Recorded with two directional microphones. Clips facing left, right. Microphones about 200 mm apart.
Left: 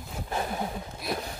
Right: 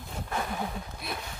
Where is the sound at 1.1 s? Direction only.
40° left (ahead or behind).